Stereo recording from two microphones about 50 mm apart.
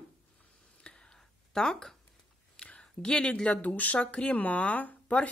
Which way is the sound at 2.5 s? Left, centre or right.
Centre.